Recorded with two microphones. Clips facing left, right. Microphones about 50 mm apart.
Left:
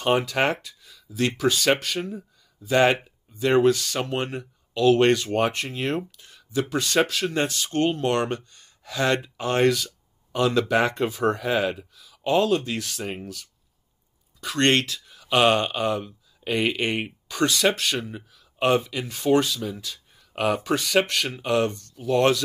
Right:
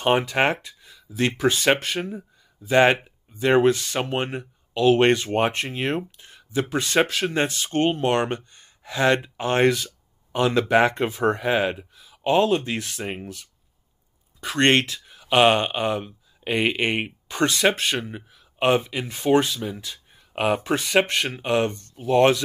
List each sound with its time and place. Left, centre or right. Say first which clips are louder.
0.0 s speech: right 2 dB; right